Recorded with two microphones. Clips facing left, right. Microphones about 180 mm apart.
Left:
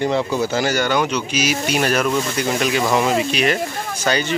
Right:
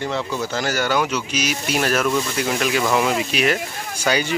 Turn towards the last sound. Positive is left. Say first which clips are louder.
# left 1 dB
turn(degrees=-10)  # may be behind; listen again after turning